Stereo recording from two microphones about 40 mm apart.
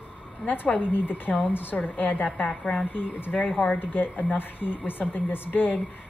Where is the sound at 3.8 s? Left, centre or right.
Left.